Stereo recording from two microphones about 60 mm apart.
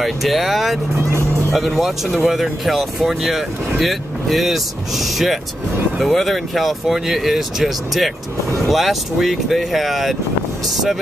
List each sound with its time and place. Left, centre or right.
0.0 s speech: centre